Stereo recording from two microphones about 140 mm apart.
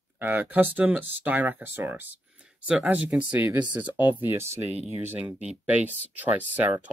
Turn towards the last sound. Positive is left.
turn(degrees=-10)  # may be behind; listen again after turning